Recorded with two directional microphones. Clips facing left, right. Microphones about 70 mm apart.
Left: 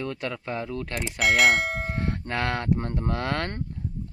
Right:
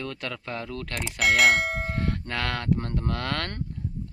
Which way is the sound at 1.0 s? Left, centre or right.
Centre.